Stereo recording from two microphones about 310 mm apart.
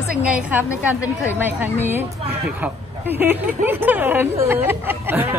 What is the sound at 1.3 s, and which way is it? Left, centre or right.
Speech, centre.